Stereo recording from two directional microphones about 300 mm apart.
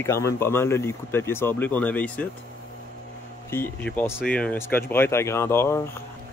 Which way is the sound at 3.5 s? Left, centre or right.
Centre.